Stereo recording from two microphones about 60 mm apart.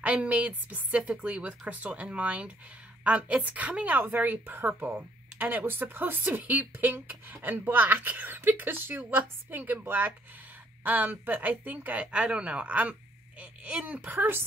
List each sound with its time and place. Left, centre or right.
0.0 s a woman's voice: right